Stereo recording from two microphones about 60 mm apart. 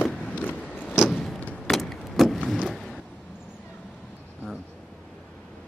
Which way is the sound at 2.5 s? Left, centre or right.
Centre.